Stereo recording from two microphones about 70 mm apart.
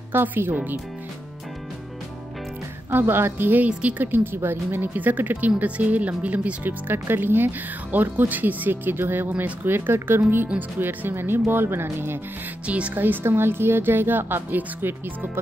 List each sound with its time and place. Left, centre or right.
0.1 s speech: right
2.9 s a woman's voice: right
12.6 s speech: centre